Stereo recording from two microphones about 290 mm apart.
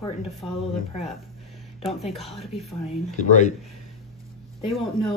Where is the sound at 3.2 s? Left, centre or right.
Left.